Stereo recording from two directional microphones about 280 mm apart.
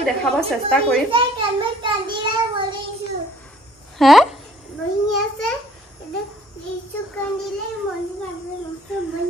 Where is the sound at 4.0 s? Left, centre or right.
Centre.